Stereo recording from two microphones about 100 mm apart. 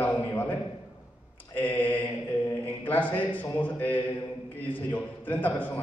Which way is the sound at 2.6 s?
20° left (ahead or behind).